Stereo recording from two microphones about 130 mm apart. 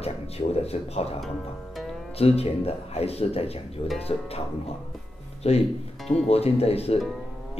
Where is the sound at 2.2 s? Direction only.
50° left (ahead or behind).